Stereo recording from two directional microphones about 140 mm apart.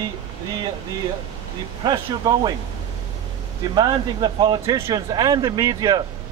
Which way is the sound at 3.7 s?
35° right (ahead or behind).